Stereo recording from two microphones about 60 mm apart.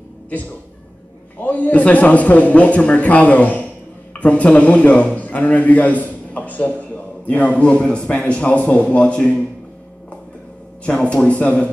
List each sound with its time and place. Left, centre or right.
1.4 s a man's voice: left
10.9 s a man's voice: centre